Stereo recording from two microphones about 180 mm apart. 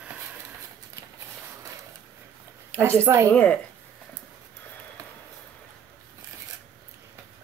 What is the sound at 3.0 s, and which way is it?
Speech, 15° right (ahead or behind).